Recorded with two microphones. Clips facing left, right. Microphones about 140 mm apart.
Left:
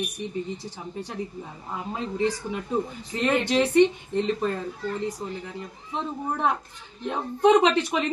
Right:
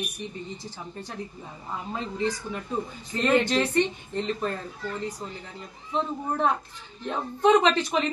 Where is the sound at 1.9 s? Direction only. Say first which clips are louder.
Left 3 dB; 15° left (ahead or behind).